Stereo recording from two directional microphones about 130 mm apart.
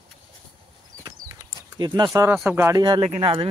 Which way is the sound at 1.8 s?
35° right (ahead or behind).